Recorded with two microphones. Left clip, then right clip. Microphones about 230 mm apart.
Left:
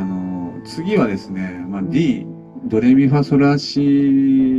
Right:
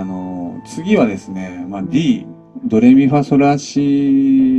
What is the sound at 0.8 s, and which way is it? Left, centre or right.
Speech, centre.